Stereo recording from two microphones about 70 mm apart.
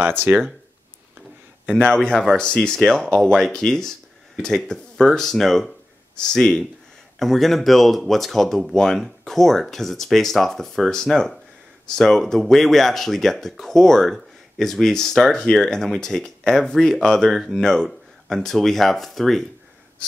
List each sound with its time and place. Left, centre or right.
0.0 s speech: right
1.9 s speech: centre